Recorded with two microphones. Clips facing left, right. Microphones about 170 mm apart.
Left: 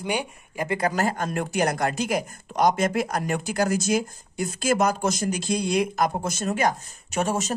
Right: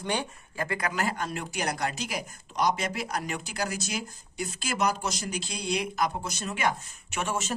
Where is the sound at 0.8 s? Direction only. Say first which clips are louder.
Left 7 dB; 40° left (ahead or behind).